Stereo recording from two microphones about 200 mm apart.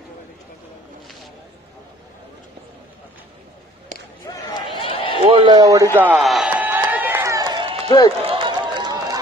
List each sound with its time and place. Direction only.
4.3 s run: 25° left (ahead or behind)
5.2 s a sound: 25° right (ahead or behind)
5.9 s run: 5° right (ahead or behind)